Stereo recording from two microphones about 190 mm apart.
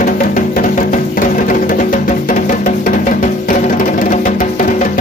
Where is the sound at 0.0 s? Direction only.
40° left (ahead or behind).